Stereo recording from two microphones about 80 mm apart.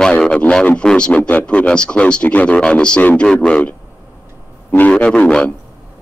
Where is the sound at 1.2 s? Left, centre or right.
Left.